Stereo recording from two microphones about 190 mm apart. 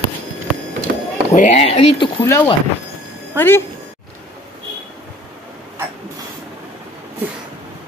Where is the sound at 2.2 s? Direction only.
15° left (ahead or behind).